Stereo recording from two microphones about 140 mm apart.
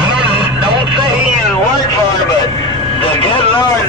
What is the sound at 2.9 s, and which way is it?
Speech, 40° left (ahead or behind).